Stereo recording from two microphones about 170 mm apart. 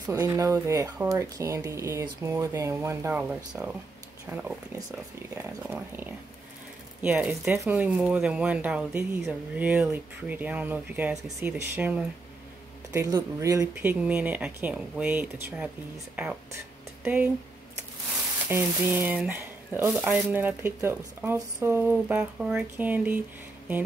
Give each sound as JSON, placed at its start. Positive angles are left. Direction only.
{"t": 0.0, "sound": "speech", "side_deg": -15}
{"t": 17.0, "sound": "speech", "side_deg": -10}
{"t": 18.5, "sound": "speech", "side_deg": -10}